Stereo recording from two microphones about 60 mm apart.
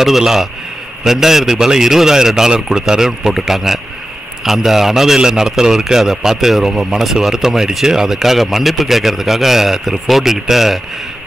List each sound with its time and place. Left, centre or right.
0.0 s a man's voice: centre